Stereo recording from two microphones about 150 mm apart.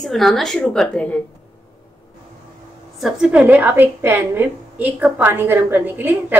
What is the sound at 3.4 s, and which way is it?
A woman's voice, 15° right (ahead or behind).